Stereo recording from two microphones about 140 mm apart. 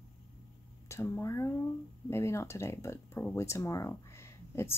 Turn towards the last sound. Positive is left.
turn(degrees=20)  # may be behind; listen again after turning